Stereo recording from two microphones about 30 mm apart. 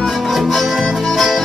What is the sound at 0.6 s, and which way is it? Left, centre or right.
Music, centre.